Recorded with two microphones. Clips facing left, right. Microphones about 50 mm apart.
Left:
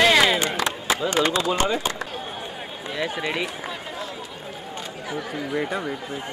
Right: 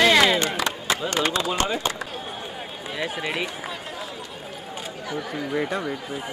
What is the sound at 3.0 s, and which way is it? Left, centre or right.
Speech, centre.